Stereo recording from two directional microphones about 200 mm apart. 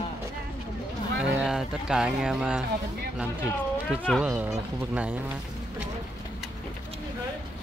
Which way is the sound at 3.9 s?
Centre (ahead or behind).